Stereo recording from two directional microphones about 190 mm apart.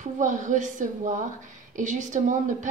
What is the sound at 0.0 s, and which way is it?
A woman's voice, 40° right (ahead or behind).